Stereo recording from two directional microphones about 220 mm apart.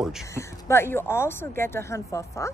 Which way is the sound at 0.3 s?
10° left (ahead or behind).